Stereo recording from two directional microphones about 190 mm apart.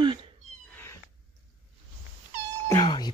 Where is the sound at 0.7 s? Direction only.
15° left (ahead or behind).